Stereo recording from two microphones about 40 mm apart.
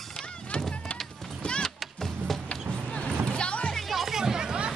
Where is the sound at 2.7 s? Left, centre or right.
Left.